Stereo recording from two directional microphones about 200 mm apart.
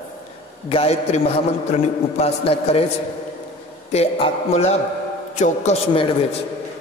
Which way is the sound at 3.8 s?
30° left (ahead or behind).